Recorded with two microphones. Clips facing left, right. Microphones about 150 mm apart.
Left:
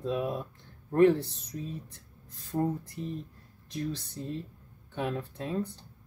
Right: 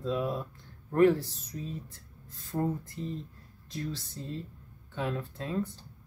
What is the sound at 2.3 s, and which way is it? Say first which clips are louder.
Speech: left 1 dB; 15° left (ahead or behind).